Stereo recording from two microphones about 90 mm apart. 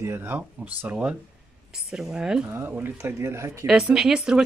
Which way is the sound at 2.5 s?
25° right (ahead or behind).